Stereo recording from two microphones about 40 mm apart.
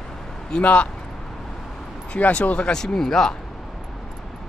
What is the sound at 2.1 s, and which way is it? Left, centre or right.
Speech, left.